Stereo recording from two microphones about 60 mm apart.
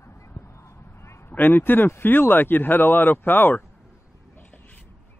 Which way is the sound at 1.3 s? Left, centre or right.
Left.